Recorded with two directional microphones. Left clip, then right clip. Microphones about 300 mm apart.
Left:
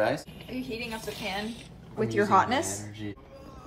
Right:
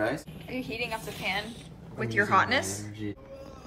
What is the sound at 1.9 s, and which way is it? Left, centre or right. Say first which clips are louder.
Speech: left 1 dB; centre.